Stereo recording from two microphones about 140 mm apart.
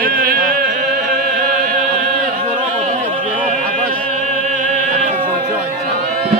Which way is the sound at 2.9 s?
65° right (ahead or behind).